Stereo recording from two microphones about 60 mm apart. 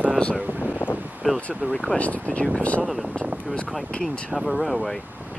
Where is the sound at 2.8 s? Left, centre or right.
Centre.